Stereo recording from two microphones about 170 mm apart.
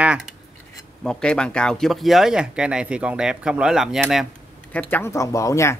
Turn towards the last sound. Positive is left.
turn(degrees=20)  # may be behind; listen again after turning